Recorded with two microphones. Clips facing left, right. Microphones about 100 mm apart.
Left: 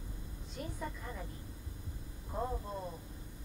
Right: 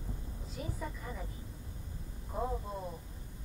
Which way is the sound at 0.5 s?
Centre (ahead or behind).